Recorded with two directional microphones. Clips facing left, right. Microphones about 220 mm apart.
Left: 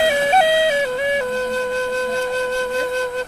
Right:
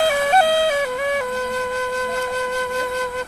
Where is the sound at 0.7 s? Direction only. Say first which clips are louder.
Left 2 dB; 25° left (ahead or behind).